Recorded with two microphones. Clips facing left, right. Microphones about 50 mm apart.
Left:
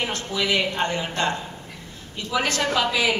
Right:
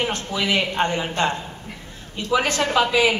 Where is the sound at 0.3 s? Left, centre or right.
Right.